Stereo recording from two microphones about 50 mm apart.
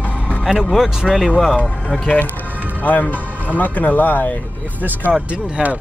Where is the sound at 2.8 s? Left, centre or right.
Left.